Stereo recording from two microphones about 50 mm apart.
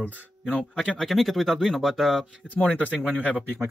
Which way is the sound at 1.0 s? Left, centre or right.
Centre.